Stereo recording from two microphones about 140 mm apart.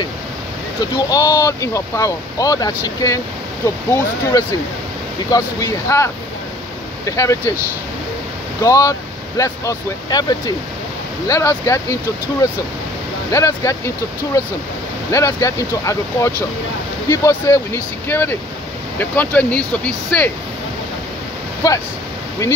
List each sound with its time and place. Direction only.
0.7 s speech: 30° left (ahead or behind)
8.6 s speech: 25° left (ahead or behind)
11.2 s speech: 20° left (ahead or behind)
21.6 s speech: 25° left (ahead or behind)